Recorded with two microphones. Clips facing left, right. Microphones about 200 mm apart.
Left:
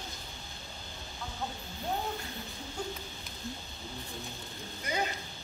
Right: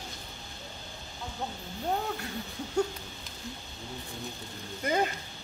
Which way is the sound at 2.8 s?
70° right (ahead or behind).